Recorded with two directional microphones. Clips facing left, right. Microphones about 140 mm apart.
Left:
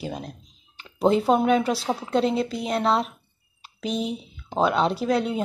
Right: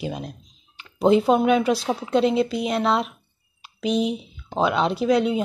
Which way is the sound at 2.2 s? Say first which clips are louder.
Right 3 dB; 10° right (ahead or behind).